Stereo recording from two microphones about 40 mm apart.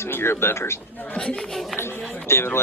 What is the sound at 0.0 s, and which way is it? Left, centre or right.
Speech, left.